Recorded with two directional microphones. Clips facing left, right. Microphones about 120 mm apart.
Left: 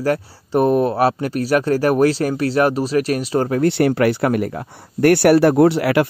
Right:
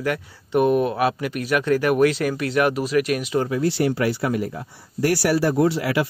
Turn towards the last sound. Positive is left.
turn(degrees=65)  # may be behind; listen again after turning